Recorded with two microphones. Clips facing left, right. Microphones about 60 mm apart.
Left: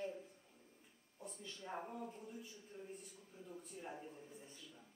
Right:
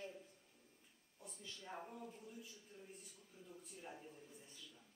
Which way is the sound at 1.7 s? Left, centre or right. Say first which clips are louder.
Left 5 dB; centre.